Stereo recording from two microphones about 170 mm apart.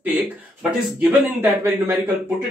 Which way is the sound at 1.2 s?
15° right (ahead or behind).